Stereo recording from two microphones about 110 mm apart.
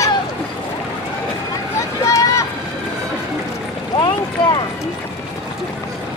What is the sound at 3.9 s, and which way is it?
Boat, 40° left (ahead or behind).